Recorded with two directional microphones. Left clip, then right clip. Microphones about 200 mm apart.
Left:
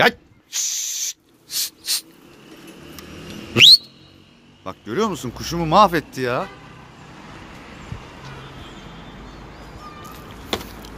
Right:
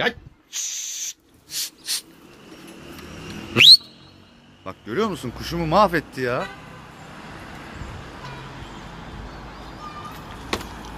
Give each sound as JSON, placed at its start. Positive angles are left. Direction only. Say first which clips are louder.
{"t": 0.0, "sound": "a sound", "louder": "left 7 dB", "side_deg": 40}
{"t": 3.6, "sound": "cat", "louder": "left 2 dB", "side_deg": 10}
{"t": 4.6, "sound": "speech", "louder": "left 2 dB", "side_deg": 20}